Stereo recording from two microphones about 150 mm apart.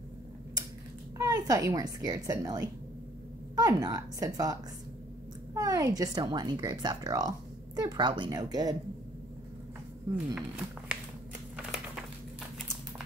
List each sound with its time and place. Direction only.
1.1 s a woman's voice: 25° right (ahead or behind)
10.1 s speech: 10° right (ahead or behind)